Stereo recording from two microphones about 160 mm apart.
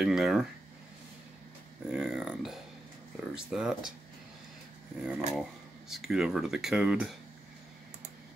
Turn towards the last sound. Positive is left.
turn(degrees=-5)  # may be behind; listen again after turning